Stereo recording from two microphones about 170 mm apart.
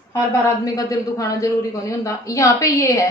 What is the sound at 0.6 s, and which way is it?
A woman's voice, 20° left (ahead or behind).